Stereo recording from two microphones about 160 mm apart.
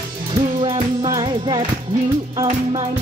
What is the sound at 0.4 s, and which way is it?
Music, 30° right (ahead or behind).